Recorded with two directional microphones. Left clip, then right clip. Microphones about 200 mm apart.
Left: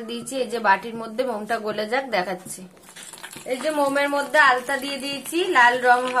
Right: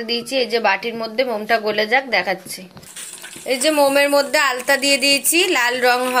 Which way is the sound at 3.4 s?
25° right (ahead or behind).